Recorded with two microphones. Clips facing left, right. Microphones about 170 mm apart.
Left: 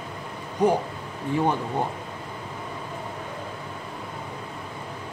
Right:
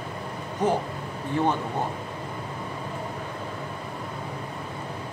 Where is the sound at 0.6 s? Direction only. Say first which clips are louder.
Left 3 dB; 10° left (ahead or behind).